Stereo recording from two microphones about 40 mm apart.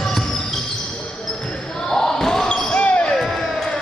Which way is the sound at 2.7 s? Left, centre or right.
Left.